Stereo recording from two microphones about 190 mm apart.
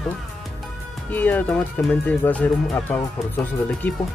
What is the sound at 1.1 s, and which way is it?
Speech, 10° left (ahead or behind).